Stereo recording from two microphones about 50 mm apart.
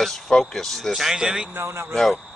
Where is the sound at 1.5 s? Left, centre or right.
Right.